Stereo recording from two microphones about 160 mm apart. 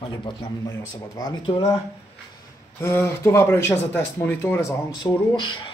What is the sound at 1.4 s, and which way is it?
Speech, 35° left (ahead or behind).